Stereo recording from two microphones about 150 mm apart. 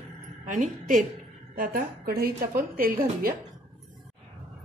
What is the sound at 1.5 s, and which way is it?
A woman's voice, 75° right (ahead or behind).